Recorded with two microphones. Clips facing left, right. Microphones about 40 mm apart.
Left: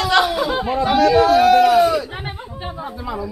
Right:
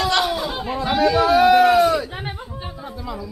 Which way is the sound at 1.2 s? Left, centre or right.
Centre.